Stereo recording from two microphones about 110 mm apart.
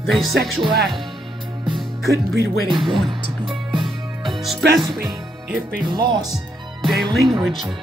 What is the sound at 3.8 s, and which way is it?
Music, centre (ahead or behind).